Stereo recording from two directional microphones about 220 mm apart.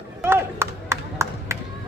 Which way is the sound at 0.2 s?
10° right (ahead or behind).